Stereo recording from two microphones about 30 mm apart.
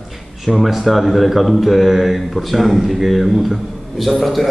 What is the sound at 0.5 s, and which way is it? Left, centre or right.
Speech, centre.